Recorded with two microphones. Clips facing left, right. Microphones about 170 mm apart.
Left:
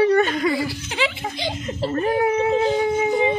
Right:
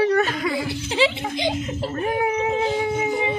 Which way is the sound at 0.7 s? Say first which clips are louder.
Right 4 dB; 30° right (ahead or behind).